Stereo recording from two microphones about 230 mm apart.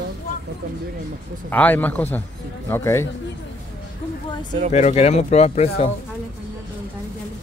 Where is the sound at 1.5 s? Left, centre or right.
Centre.